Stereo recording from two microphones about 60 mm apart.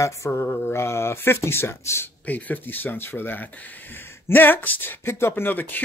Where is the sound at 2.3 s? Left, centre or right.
Left.